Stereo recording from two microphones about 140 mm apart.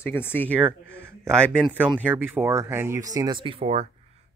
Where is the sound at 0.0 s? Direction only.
15° left (ahead or behind).